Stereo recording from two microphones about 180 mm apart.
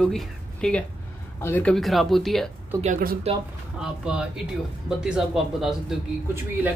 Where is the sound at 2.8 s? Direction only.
50° right (ahead or behind).